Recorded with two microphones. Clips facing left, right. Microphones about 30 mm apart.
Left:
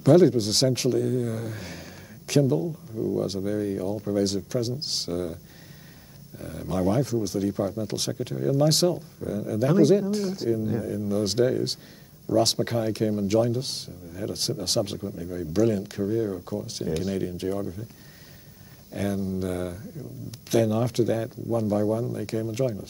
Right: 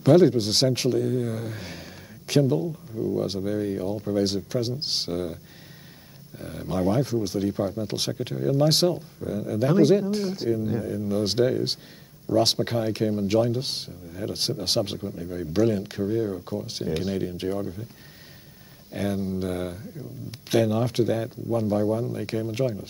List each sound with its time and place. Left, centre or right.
0.0 s speech: right
2.6 s speech: centre
11.1 s speech: right
18.9 s speech: right